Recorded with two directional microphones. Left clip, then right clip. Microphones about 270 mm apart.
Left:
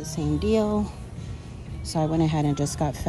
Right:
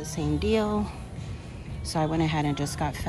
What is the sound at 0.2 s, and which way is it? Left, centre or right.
Speech, centre.